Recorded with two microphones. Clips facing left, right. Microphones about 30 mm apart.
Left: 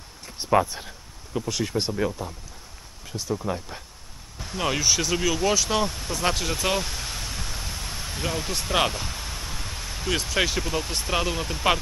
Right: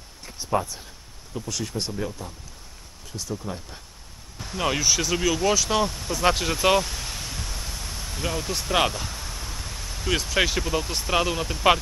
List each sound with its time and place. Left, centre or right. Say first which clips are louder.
0.4 s speech: left 4 dB; left
1.3 s speech: left 4 dB; left
4.4 s speech: right 1 dB; centre
6.8 s a sound: right 1 dB; centre
10.0 s speech: right 1 dB; centre